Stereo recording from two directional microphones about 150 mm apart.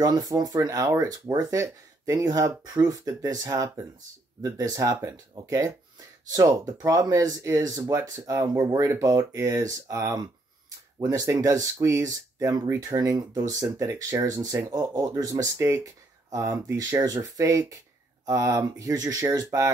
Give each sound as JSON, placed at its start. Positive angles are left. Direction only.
{"t": 0.0, "sound": "speech", "side_deg": -25}